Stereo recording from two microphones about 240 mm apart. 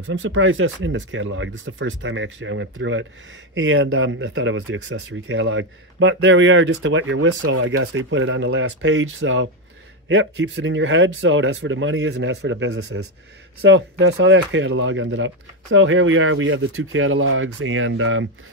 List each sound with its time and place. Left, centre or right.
0.2 s speech: right